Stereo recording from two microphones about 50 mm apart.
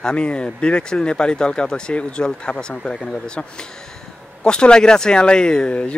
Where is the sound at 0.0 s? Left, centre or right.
Left.